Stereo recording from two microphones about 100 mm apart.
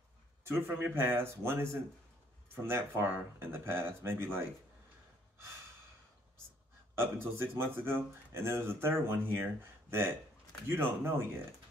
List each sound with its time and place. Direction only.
0.4 s speech: 25° right (ahead or behind)
7.0 s speech: 25° right (ahead or behind)